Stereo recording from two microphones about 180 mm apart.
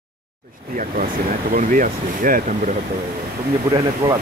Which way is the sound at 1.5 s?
50° right (ahead or behind).